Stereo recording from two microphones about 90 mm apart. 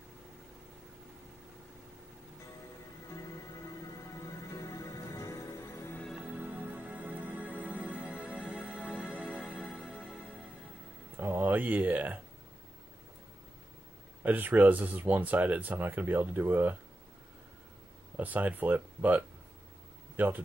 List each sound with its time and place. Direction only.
4.5 s music: 35° left (ahead or behind)
6.2 s music: 20° right (ahead or behind); by 9.9 s 5° right (ahead or behind)
11.1 s speech: 20° right (ahead or behind)
14.2 s speech: 20° right (ahead or behind)
18.1 s speech: 20° right (ahead or behind)